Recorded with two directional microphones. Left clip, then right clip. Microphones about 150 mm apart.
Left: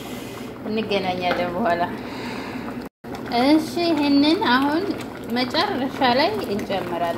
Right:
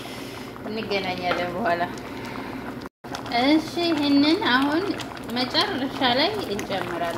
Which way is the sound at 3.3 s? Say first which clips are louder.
Left 2 dB; 15° left (ahead or behind).